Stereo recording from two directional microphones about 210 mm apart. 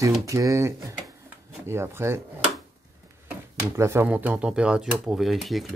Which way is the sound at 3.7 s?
10° right (ahead or behind).